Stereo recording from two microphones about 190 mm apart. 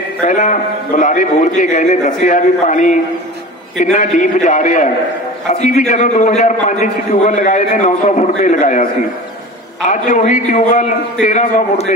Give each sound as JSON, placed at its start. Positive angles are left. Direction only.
{"t": 0.2, "sound": "a man's voice", "side_deg": 40}
{"t": 9.8, "sound": "a man's voice", "side_deg": 40}